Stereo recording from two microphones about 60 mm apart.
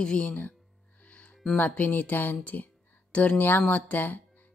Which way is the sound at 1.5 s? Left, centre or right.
Left.